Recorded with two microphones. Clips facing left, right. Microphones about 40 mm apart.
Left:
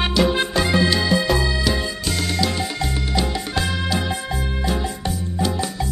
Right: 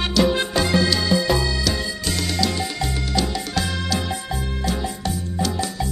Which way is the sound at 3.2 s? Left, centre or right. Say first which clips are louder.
Even; left.